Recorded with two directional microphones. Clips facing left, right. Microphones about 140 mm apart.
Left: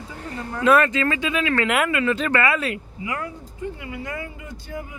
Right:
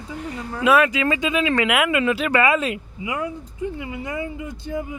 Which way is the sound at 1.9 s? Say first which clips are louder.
Right 2 dB; 20° right (ahead or behind).